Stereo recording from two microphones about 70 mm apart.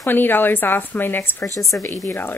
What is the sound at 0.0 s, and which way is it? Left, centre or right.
A woman's voice, left.